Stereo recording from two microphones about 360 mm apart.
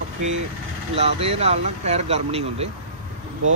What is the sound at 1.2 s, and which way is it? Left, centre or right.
Speech, centre.